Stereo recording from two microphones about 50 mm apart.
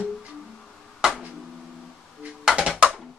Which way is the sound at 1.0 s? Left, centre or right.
Centre.